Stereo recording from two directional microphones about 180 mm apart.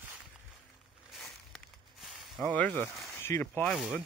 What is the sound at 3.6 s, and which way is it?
Speech, centre (ahead or behind).